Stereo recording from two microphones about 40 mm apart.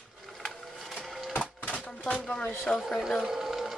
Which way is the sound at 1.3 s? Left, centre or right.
Left.